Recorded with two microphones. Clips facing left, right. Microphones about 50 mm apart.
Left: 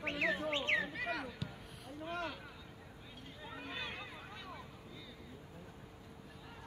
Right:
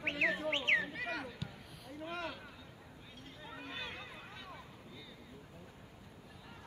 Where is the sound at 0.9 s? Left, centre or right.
Centre.